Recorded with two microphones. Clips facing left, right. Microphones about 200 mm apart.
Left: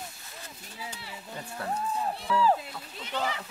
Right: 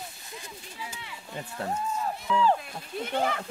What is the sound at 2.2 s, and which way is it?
Speech, 5° left (ahead or behind).